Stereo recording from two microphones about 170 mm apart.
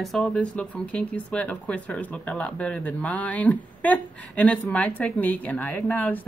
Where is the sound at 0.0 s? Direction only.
Centre (ahead or behind).